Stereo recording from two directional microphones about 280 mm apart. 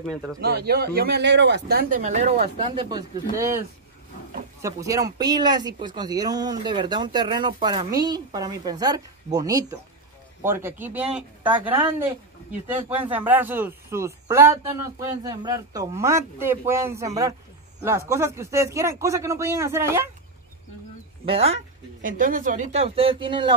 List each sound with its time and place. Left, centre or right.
0.0 s speech: centre
0.4 s speech: right; by 20.1 s centre
21.3 s speech: right